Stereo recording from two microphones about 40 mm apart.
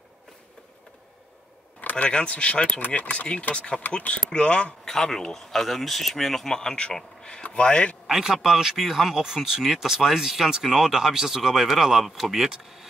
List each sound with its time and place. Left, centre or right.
2.0 s speech: left
3.0 s speech: left
3.5 s speech: left
4.8 s speech: centre
7.4 s speech: left
8.1 s speech: centre